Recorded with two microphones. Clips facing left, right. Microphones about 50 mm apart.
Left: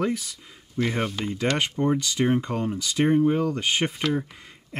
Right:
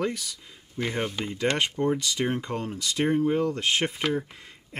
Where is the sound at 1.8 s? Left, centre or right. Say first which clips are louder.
Left 2 dB; centre.